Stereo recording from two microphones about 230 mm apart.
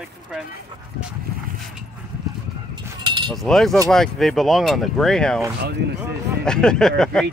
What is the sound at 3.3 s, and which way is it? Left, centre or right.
Speech, centre.